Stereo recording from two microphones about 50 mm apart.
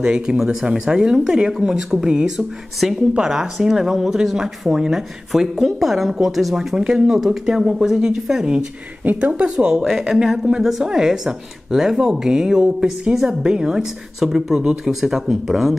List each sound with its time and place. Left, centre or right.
0.0 s speech: centre
0.4 s speech: centre
9.0 s speech: right
9.3 s speech: right
9.8 s speech: centre